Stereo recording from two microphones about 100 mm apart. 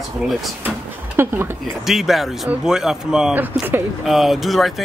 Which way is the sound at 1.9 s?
Centre (ahead or behind).